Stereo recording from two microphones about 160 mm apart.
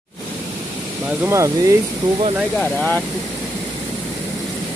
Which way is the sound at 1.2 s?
20° right (ahead or behind).